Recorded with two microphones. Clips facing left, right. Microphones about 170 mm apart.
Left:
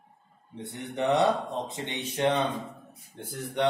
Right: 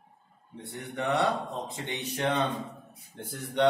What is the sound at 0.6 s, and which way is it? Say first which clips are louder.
Speech: left 4 dB; 20° left (ahead or behind).